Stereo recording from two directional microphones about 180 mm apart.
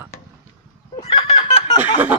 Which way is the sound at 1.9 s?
10° right (ahead or behind).